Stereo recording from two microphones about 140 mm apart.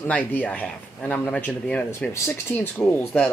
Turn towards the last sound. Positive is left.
turn(degrees=10)  # may be behind; listen again after turning